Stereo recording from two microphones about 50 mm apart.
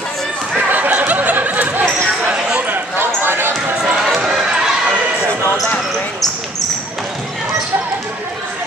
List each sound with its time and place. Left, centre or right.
0.7 s a sound: right
2.7 s basketball bounce: right
4.0 s basketball bounce: centre